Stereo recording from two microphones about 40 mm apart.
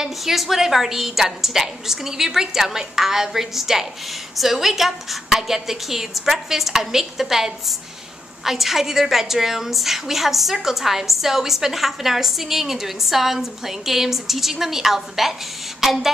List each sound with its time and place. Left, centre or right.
0.0 s a woman's voice: centre